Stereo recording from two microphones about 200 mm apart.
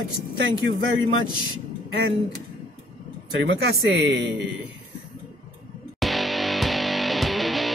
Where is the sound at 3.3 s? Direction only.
60° right (ahead or behind).